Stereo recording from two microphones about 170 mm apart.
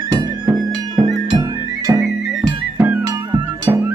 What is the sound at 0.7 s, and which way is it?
Music, 25° right (ahead or behind).